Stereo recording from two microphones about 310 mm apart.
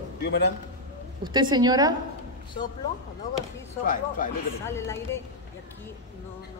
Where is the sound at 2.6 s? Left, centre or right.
Centre.